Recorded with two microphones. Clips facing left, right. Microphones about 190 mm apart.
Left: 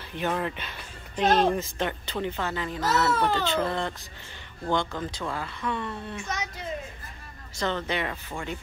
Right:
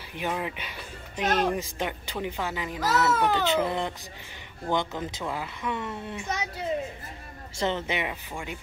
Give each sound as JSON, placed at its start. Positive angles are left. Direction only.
{"t": 0.1, "sound": "speech", "side_deg": -10}
{"t": 6.2, "sound": "speech", "side_deg": -35}
{"t": 7.5, "sound": "speech", "side_deg": -25}
{"t": 7.9, "sound": "speech", "side_deg": -15}